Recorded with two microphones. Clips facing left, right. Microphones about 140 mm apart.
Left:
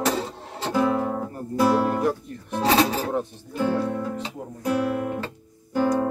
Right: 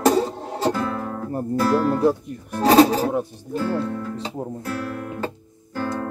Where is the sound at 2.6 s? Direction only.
40° right (ahead or behind).